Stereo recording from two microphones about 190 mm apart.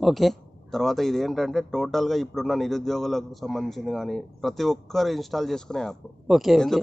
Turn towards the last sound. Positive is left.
turn(degrees=0)  # may be behind; listen again after turning